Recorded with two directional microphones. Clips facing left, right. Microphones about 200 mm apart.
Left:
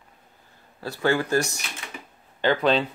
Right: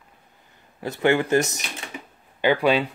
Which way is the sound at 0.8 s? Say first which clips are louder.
Right 3 dB; 20° right (ahead or behind).